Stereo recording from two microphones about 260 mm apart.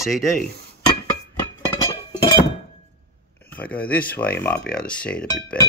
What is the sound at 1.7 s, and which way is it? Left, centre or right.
Chink, centre.